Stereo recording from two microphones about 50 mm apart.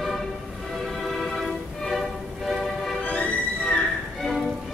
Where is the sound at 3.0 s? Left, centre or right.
Left.